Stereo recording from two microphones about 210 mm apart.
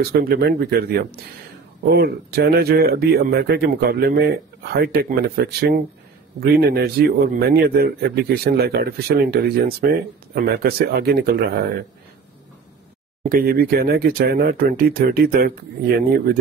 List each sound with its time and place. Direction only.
0.0 s a man's voice: 50° right (ahead or behind)
13.2 s a man's voice: 45° right (ahead or behind)